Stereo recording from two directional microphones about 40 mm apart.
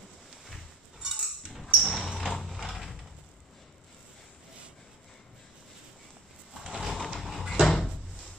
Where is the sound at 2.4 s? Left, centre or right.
Centre.